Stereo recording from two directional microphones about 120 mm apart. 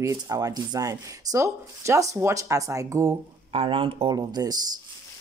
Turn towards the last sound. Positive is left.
turn(degrees=-35)  # may be behind; listen again after turning